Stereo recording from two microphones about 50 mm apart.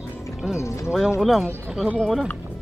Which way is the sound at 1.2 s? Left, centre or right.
Centre.